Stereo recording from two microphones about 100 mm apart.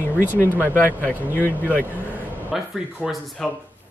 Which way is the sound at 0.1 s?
20° right (ahead or behind).